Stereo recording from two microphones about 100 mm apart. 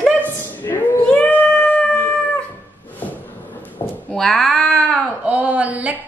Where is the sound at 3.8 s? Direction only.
30° left (ahead or behind).